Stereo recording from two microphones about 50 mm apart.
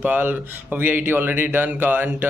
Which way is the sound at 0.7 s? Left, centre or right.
Right.